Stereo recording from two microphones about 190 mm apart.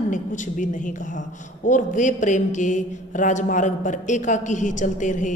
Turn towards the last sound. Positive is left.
turn(degrees=40)  # may be behind; listen again after turning